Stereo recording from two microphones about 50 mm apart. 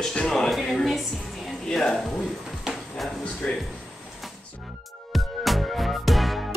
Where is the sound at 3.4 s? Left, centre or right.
Left.